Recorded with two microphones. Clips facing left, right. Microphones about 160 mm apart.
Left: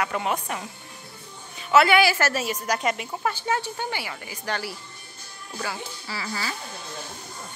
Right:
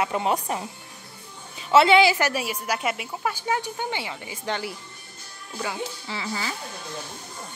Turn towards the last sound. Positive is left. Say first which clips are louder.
# right 1 dB
turn(degrees=-15)  # may be behind; listen again after turning